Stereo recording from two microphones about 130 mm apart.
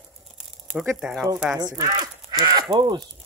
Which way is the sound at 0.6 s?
10° right (ahead or behind).